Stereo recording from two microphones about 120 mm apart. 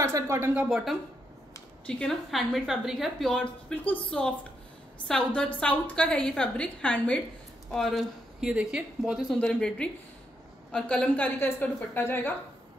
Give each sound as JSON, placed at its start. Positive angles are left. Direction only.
{"t": 0.0, "sound": "a sound", "side_deg": -25}
{"t": 0.6, "sound": "a woman's voice", "side_deg": -5}
{"t": 9.4, "sound": "a woman's voice", "side_deg": 5}